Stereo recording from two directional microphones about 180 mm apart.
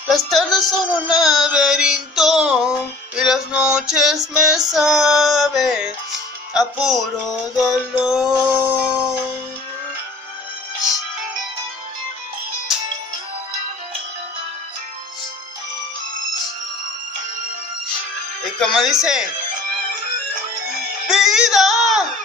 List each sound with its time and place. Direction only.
0.3 s music: centre (ahead or behind)
18.6 s music: centre (ahead or behind)
21.1 s music: centre (ahead or behind)